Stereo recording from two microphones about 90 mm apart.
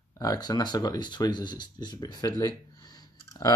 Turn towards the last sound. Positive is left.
turn(degrees=45)  # may be behind; listen again after turning